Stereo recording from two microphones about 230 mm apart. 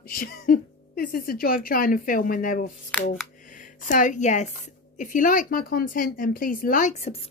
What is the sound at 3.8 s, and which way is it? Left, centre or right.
A woman's voice, left.